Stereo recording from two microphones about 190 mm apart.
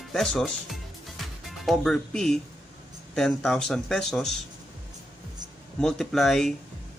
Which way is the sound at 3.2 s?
Centre (ahead or behind).